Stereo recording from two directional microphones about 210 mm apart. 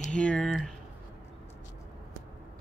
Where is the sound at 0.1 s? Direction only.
5° left (ahead or behind).